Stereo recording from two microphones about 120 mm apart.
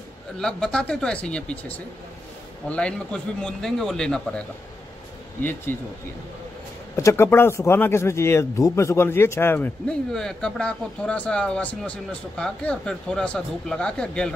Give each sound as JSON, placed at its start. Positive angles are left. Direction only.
{"t": 0.4, "sound": "speech", "side_deg": 5}
{"t": 7.0, "sound": "speech", "side_deg": 25}
{"t": 10.1, "sound": "speech", "side_deg": 5}